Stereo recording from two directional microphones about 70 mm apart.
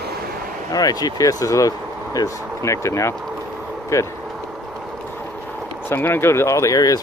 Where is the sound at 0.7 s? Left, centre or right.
Left.